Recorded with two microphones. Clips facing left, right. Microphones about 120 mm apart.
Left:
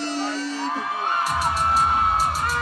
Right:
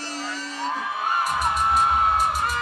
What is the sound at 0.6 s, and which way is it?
Music, centre (ahead or behind).